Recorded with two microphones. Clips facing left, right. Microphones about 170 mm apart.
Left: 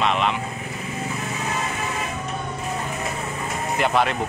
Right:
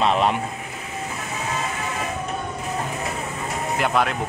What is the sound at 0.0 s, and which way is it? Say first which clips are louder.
Speech: right 2 dB; 35° right (ahead or behind).